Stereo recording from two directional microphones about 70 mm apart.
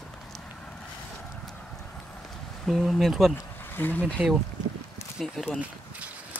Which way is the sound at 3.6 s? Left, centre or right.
Left.